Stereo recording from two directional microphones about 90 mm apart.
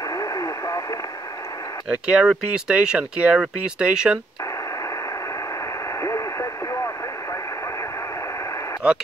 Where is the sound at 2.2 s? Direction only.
10° right (ahead or behind).